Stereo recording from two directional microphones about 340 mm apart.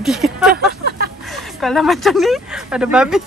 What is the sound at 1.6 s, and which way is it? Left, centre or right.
Speech, centre.